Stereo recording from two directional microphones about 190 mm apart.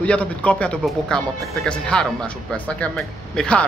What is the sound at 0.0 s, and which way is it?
Speech, 5° left (ahead or behind).